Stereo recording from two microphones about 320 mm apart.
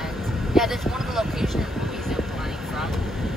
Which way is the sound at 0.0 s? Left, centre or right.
Centre.